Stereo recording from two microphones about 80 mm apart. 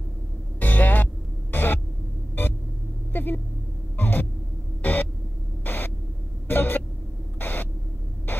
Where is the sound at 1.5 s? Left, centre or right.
Left.